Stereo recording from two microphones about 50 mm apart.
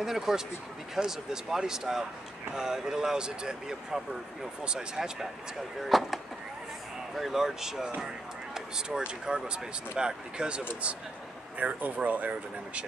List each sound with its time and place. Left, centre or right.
0.0 s speech: centre
5.8 s speech: centre
11.5 s speech: right